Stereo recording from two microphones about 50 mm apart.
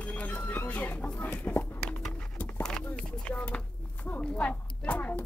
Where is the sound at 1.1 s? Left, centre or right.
Left.